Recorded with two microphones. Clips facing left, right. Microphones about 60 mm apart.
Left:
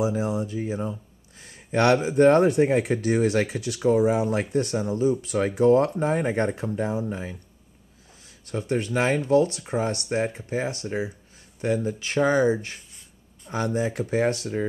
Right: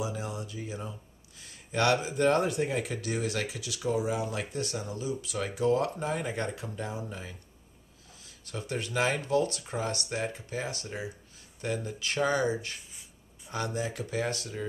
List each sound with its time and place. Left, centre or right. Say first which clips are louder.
0.1 s speech: left 10 dB; left
0.4 s speech: left 10 dB; left
8.5 s speech: left 9 dB; left
13.7 s speech: left 10 dB; left